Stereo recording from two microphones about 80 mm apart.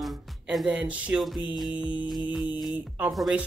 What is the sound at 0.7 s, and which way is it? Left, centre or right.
Speech, centre.